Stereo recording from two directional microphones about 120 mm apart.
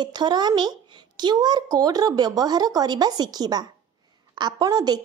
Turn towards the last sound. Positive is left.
turn(degrees=-35)  # may be behind; listen again after turning